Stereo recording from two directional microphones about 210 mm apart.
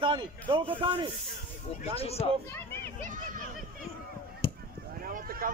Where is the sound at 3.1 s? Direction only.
40° right (ahead or behind).